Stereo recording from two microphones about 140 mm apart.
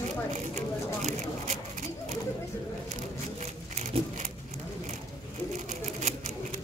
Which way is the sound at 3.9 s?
45° right (ahead or behind).